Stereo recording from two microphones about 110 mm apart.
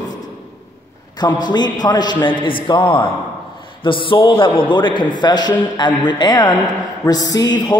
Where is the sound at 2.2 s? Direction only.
50° left (ahead or behind).